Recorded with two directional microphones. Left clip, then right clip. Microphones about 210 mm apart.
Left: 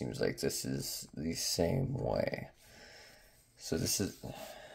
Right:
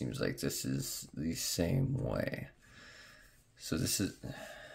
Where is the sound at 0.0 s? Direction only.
15° right (ahead or behind).